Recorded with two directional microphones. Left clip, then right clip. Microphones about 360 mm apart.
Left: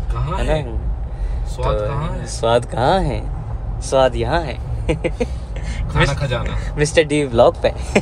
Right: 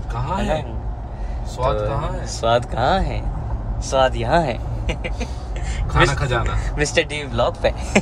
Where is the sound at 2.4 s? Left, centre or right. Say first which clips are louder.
Left 2 dB; centre.